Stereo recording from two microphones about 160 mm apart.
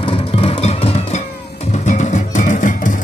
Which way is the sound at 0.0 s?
35° left (ahead or behind).